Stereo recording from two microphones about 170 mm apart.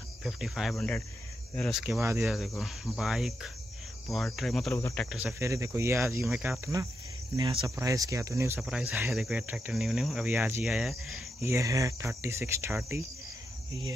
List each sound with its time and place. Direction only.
0.2 s cricket: centre (ahead or behind)
2.0 s speech: 15° right (ahead or behind)
2.2 s cricket: centre (ahead or behind)
4.7 s speech: 15° left (ahead or behind)
5.4 s speech: 15° right (ahead or behind)
7.6 s speech: 20° right (ahead or behind)
8.5 s cricket: 5° right (ahead or behind)
11.4 s speech: 15° right (ahead or behind)